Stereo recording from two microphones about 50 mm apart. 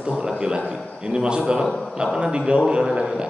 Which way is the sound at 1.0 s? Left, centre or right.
Centre.